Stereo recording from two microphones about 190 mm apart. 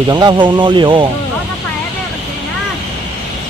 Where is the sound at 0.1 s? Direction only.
20° right (ahead or behind).